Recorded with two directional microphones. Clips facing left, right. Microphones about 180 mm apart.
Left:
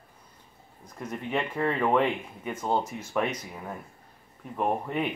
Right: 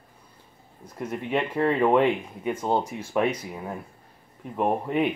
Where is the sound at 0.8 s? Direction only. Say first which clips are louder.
Right 4 dB; 10° right (ahead or behind).